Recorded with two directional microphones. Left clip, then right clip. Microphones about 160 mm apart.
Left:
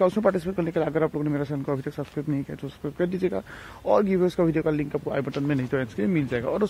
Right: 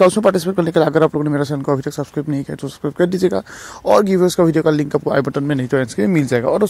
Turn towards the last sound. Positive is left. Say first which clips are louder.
# right 10 dB
turn(degrees=-35)  # may be behind; listen again after turning